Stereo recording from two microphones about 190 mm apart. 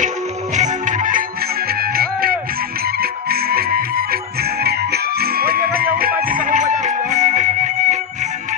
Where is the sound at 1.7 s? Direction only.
55° right (ahead or behind).